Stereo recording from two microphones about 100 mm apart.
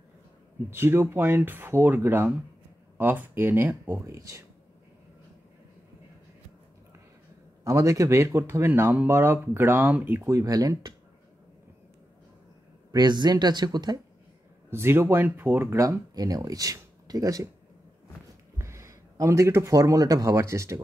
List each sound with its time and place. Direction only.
0.7 s speech: 25° right (ahead or behind)
4.0 s speech: 30° right (ahead or behind)
7.6 s speech: 30° right (ahead or behind)
10.2 s speech: 35° right (ahead or behind)
12.9 s speech: 45° right (ahead or behind)
14.7 s speech: 25° right (ahead or behind)
18.6 s speech: 30° right (ahead or behind)